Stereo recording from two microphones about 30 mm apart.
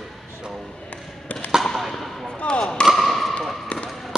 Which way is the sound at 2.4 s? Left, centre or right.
Left.